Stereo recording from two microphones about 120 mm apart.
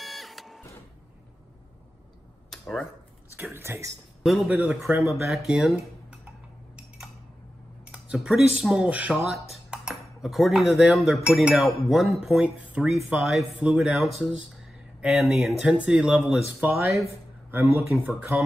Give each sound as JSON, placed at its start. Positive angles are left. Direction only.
{"t": 0.0, "sound": "printer", "side_deg": 0}
{"t": 2.5, "sound": "a sound", "side_deg": 0}
{"t": 3.5, "sound": "speech", "side_deg": -20}
{"t": 5.2, "sound": "speech", "side_deg": 0}
{"t": 7.8, "sound": "a sound", "side_deg": -10}
{"t": 8.5, "sound": "speech", "side_deg": -5}
{"t": 9.1, "sound": "speech", "side_deg": 0}
{"t": 14.2, "sound": "a sound", "side_deg": -5}
{"t": 15.2, "sound": "speech", "side_deg": 0}
{"t": 17.5, "sound": "speech", "side_deg": -20}